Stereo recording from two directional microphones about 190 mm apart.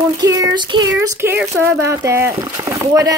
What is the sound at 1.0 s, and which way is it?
Speech, 15° right (ahead or behind).